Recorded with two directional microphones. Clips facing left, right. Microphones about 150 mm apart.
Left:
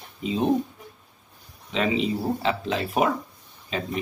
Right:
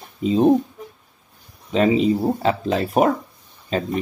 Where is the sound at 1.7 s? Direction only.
40° right (ahead or behind).